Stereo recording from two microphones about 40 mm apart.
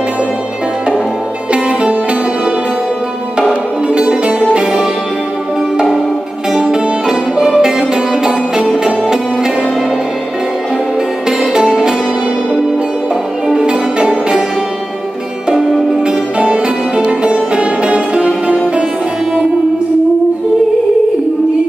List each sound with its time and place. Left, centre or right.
1.5 s music: right
3.3 s music: right
6.5 s music: centre
11.2 s music: centre
13.7 s music: right
16.1 s music: right